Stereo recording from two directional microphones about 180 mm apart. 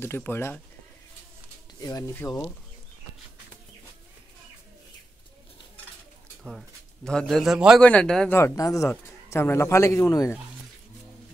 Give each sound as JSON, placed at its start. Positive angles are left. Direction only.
{"t": 0.0, "sound": "speech", "side_deg": 10}
{"t": 1.8, "sound": "speech", "side_deg": 20}
{"t": 7.1, "sound": "a man's voice", "side_deg": 5}
{"t": 8.4, "sound": "speech", "side_deg": 15}